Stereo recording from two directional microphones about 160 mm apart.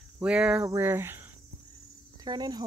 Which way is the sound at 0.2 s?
5° right (ahead or behind).